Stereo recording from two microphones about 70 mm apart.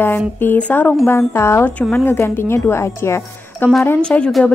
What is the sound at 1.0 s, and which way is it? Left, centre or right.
A woman's voice, left.